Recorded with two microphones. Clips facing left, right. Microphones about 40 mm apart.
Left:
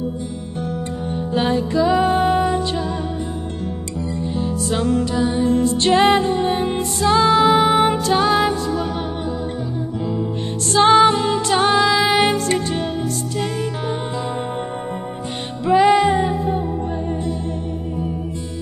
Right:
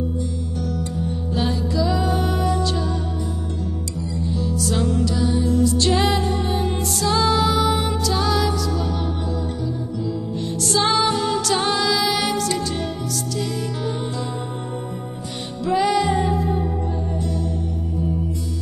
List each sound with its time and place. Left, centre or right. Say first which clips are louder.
1.3 s music: left 5 dB; left
4.4 s music: left 2 dB; left
7.5 s music: left 6 dB; left
10.0 s music: left 3 dB; left
11.6 s music: left 6 dB; centre
11.9 s music: left 5 dB; left
13.4 s music: left 3 dB; left
15.6 s music: left 5 dB; left